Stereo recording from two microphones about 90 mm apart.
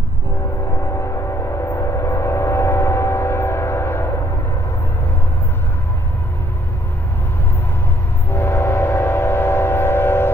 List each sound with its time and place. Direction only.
0.7 s train: 35° left (ahead or behind)
8.3 s train: 25° left (ahead or behind)